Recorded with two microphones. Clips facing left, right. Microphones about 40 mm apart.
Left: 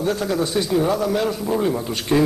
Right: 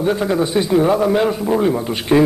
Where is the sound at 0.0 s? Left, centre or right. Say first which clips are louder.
Right 4 dB; right.